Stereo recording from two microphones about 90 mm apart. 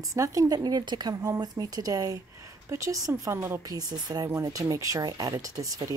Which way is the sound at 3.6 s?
45° right (ahead or behind).